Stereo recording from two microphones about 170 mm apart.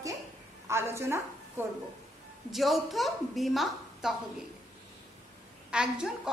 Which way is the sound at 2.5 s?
Centre (ahead or behind).